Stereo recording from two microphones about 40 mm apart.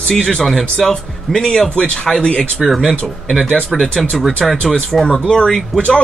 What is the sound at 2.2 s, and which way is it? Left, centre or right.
Speech, left.